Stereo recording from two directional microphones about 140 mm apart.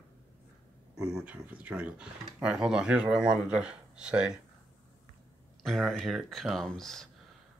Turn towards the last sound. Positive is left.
turn(degrees=5)  # may be behind; listen again after turning